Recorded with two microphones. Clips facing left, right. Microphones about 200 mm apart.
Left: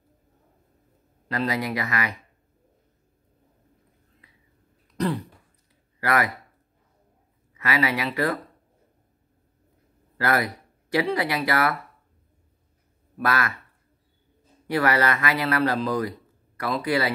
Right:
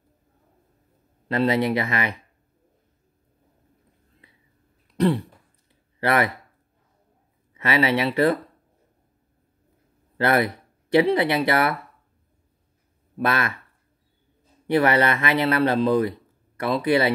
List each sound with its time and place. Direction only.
1.3 s speech: 25° right (ahead or behind)
4.9 s throat clearing: 30° right (ahead or behind)
5.9 s speech: 25° right (ahead or behind)
7.5 s speech: 25° right (ahead or behind)
10.1 s speech: 25° right (ahead or behind)
13.2 s speech: 25° right (ahead or behind)
14.7 s speech: 25° right (ahead or behind)